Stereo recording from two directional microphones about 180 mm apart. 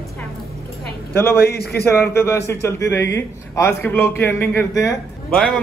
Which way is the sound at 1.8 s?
15° left (ahead or behind).